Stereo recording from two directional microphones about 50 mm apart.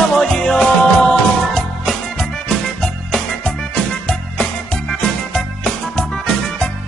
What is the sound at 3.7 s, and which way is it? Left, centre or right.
Music, left.